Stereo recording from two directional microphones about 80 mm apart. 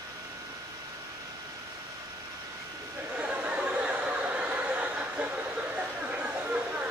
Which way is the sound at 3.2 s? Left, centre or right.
Centre.